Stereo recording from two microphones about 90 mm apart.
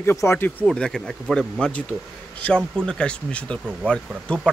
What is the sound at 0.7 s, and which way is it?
Speech, 5° left (ahead or behind).